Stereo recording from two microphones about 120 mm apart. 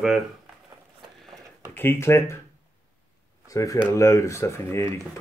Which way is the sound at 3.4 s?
30° left (ahead or behind).